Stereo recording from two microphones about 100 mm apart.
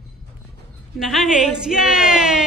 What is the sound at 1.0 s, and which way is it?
A woman's voice, 5° right (ahead or behind).